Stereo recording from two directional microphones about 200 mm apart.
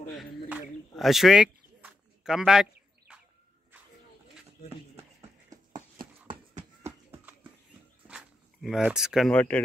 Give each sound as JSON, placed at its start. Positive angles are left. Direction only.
{"t": 0.2, "sound": "a sound", "side_deg": -5}
{"t": 6.2, "sound": "horse", "side_deg": -35}
{"t": 8.1, "sound": "speech", "side_deg": -5}